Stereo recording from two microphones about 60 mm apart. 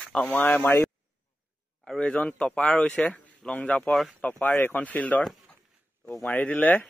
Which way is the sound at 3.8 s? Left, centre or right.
Centre.